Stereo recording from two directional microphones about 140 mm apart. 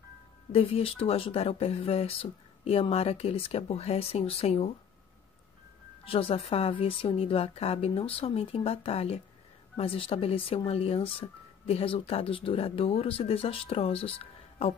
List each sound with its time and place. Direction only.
0.5 s speech: 45° left (ahead or behind)
6.0 s speech: 40° left (ahead or behind)